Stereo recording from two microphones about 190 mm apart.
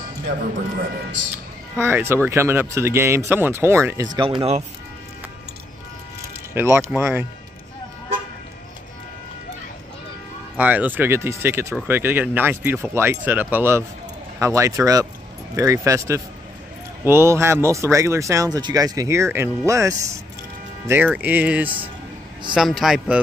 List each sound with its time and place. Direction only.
1.8 s speech: 10° right (ahead or behind); by 4.6 s 30° right (ahead or behind)
6.5 s speech: 15° right (ahead or behind)
10.6 s a man's voice: 10° right (ahead or behind)